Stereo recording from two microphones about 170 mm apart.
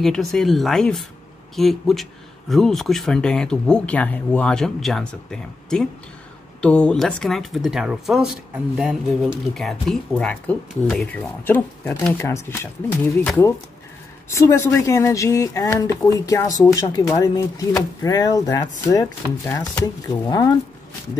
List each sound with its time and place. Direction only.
0.0 s speech: 5° left (ahead or behind); by 20.4 s 20° left (ahead or behind)